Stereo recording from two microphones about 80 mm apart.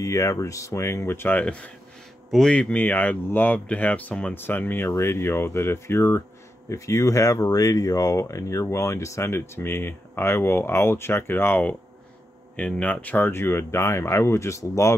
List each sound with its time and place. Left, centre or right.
0.0 s speech: left
1.4 s speech: centre
12.5 s speech: centre; by 15.0 s left